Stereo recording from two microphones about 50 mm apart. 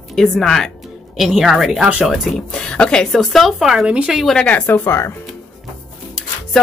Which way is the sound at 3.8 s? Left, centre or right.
Right.